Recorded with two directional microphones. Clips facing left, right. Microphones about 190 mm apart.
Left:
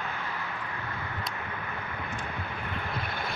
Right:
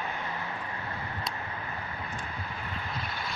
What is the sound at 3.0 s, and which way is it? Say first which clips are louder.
Vehicle: left 3 dB; 55° left (ahead or behind).